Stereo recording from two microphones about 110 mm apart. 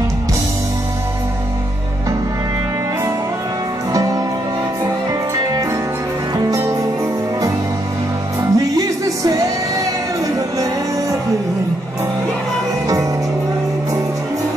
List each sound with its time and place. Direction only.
3.9 s music: 30° right (ahead or behind)
6.3 s music: 30° right (ahead or behind)
8.4 s music: 30° right (ahead or behind)